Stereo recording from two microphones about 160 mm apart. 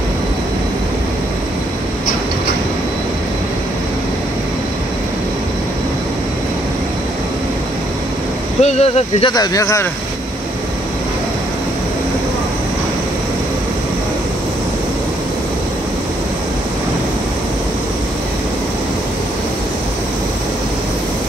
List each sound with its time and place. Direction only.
8.6 s speech: 40° left (ahead or behind)
9.3 s speech: 25° left (ahead or behind)